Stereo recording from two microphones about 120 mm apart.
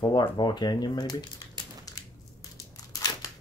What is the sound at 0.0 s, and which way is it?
Speech, 40° left (ahead or behind).